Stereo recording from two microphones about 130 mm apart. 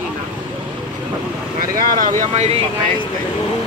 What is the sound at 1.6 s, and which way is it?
Speech, 90° right.